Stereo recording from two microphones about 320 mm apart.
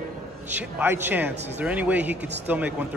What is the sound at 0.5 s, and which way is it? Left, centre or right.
A man's voice, centre.